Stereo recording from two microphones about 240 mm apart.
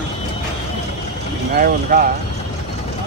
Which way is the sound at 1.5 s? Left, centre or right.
Right.